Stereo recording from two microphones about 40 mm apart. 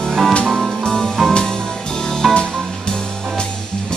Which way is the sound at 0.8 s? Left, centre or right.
Left.